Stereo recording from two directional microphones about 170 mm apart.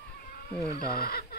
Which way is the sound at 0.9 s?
65° left (ahead or behind).